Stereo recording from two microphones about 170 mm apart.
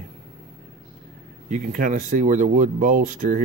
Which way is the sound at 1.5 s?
50° right (ahead or behind).